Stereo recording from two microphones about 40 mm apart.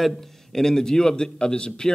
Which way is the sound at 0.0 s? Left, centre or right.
Centre.